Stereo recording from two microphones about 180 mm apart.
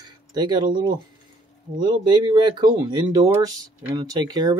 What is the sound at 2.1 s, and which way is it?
Speech, 25° right (ahead or behind).